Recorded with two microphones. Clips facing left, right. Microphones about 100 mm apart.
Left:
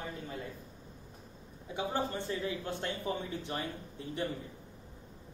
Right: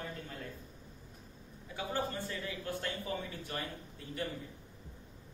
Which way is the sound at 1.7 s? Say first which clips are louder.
Left 3 dB; 20° left (ahead or behind).